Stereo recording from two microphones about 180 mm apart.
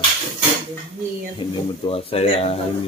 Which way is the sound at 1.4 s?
30° left (ahead or behind).